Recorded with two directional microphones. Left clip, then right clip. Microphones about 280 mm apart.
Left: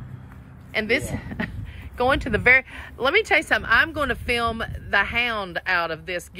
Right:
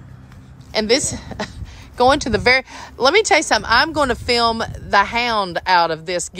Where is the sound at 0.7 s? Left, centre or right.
Centre.